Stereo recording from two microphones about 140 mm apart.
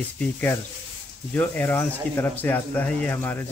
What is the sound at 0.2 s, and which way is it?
Speech, 10° left (ahead or behind).